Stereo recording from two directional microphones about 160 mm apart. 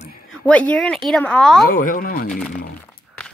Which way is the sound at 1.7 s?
60° left (ahead or behind).